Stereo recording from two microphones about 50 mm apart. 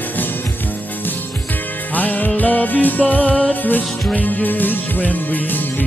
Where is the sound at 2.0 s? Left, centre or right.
Left.